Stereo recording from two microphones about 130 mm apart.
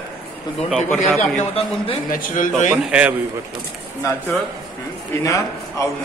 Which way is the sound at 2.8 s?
10° right (ahead or behind).